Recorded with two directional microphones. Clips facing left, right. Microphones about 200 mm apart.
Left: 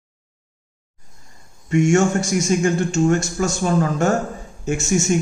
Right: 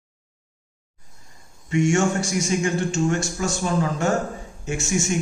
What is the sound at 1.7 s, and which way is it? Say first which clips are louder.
Speech: left 4 dB; 45° left (ahead or behind).